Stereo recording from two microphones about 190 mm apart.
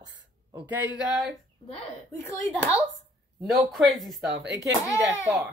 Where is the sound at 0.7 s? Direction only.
5° right (ahead or behind).